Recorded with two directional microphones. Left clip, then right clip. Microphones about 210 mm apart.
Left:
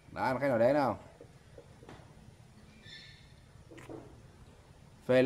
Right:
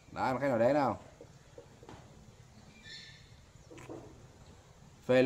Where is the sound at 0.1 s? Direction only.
Centre (ahead or behind).